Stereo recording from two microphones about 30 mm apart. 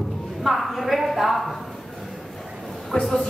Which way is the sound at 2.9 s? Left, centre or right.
Left.